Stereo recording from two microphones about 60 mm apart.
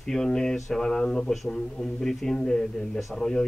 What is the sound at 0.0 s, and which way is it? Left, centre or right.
A man's voice, centre.